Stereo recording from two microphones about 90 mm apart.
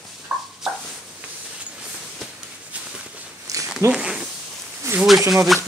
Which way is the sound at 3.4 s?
40° right (ahead or behind).